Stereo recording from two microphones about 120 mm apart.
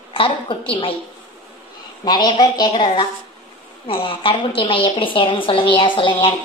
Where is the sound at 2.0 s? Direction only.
35° left (ahead or behind).